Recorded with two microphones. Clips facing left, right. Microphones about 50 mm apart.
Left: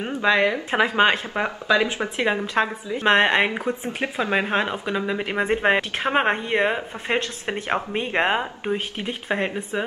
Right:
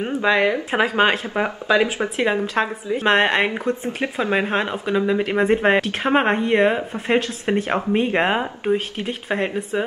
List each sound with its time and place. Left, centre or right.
0.0 s a sound: centre
0.7 s speech: centre
1.7 s speech: right
2.1 s speech: centre